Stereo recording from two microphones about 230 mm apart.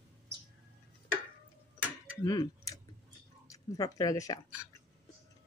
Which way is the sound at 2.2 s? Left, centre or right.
Centre.